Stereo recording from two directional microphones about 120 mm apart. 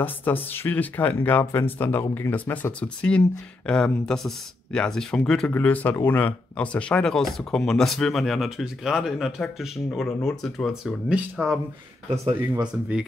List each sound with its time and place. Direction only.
0.0 s speech: 15° left (ahead or behind); by 11.6 s 10° right (ahead or behind)